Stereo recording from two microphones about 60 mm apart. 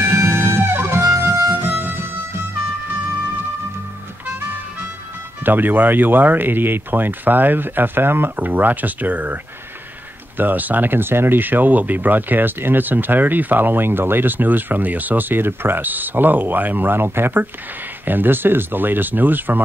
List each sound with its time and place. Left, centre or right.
0.1 s music: right
5.4 s speech: right